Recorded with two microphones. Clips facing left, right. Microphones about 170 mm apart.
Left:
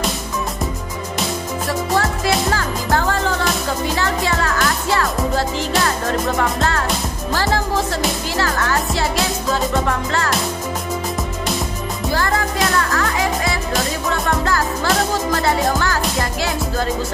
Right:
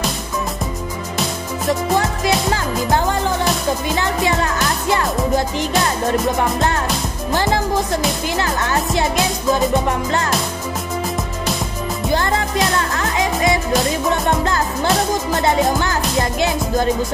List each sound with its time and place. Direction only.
2.0 s music: 20° right (ahead or behind)
7.3 s music: 20° right (ahead or behind)
12.1 s music: 20° right (ahead or behind)